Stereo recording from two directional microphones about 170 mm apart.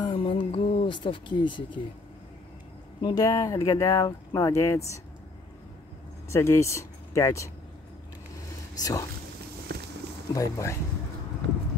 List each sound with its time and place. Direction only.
0.0 s a sound: 30° left (ahead or behind)
3.0 s speech: 25° left (ahead or behind)
6.2 s speech: 15° left (ahead or behind)
8.7 s speech: 20° left (ahead or behind)
9.7 s a sound: 70° right (ahead or behind)
10.3 s speech: 20° left (ahead or behind)